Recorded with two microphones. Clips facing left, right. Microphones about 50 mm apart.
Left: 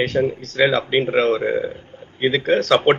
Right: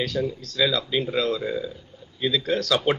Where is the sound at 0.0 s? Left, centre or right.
Left.